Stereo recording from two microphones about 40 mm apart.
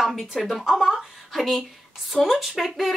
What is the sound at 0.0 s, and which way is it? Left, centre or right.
A woman's voice, centre.